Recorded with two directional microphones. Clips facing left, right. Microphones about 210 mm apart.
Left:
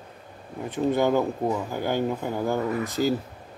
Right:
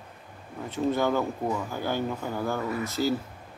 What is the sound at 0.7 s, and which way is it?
Speech, 15° left (ahead or behind).